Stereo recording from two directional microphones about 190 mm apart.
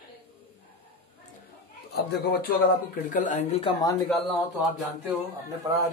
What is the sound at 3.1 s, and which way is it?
Speech, 40° left (ahead or behind).